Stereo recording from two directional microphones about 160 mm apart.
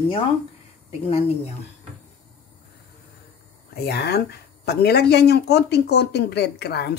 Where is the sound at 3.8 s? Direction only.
90° left.